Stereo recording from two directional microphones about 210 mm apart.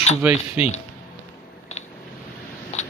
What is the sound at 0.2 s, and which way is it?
Speech, 5° right (ahead or behind).